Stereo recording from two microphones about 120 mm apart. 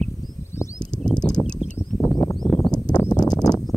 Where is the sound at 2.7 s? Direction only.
35° left (ahead or behind).